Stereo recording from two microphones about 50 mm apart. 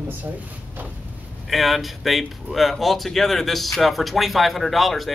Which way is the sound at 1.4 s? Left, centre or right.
Centre.